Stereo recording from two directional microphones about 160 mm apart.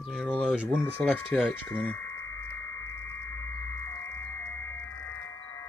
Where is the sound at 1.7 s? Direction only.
10° left (ahead or behind).